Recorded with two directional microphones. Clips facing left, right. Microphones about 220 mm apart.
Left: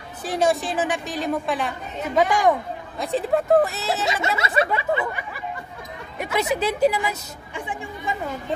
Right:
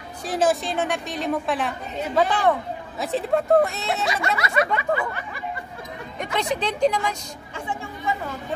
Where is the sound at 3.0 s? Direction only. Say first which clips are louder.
Left 1 dB; centre (ahead or behind).